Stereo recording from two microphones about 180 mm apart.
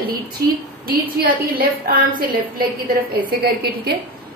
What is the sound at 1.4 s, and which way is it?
Speech, 55° right (ahead or behind).